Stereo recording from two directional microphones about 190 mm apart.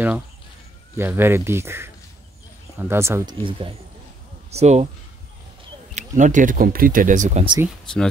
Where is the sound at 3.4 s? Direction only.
25° right (ahead or behind).